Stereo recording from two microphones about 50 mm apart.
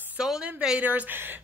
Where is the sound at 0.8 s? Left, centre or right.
Right.